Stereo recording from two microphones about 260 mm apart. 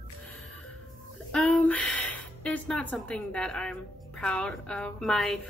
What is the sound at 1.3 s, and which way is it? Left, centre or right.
A woman's voice, centre.